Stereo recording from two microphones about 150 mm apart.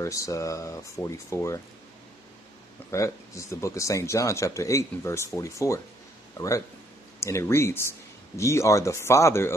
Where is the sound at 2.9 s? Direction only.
20° left (ahead or behind).